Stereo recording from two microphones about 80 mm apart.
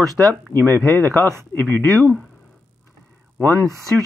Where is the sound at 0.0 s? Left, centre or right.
Right.